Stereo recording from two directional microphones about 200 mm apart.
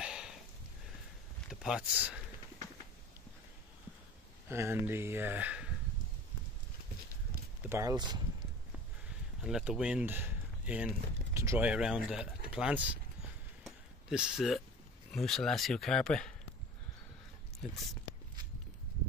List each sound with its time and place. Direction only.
0.0 s a sound: 5° right (ahead or behind)
1.5 s speech: 5° right (ahead or behind)
4.5 s speech: 10° right (ahead or behind)
7.6 s speech: 15° right (ahead or behind)
9.4 s speech: 5° right (ahead or behind)
13.7 s a sound: 5° right (ahead or behind)
15.0 s speech: centre (ahead or behind)